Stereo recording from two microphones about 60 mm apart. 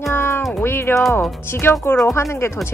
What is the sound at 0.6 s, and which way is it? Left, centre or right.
Speech, left.